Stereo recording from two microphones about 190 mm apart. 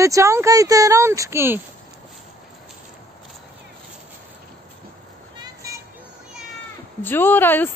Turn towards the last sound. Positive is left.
turn(degrees=10)  # may be behind; listen again after turning